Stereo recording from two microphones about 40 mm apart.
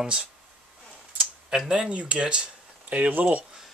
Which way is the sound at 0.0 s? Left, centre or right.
Right.